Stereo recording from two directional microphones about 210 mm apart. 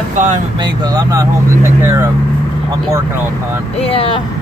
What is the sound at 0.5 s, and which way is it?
Speech, 20° right (ahead or behind).